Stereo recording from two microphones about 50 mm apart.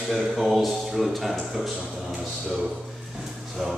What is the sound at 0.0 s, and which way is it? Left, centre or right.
A man's voice, centre.